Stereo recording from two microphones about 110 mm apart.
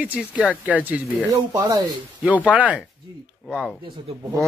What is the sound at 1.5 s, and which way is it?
Speech, 40° right (ahead or behind).